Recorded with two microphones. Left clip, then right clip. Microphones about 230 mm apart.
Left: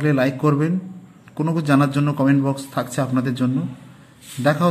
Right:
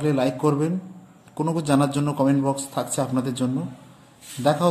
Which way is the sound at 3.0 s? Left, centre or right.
Centre.